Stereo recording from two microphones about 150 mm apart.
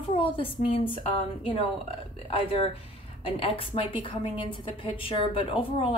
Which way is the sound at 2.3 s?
35° left (ahead or behind).